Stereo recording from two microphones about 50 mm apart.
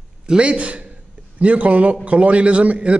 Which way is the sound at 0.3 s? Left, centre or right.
Right.